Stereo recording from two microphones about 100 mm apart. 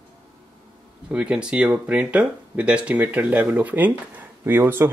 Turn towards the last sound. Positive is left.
turn(degrees=-25)  # may be behind; listen again after turning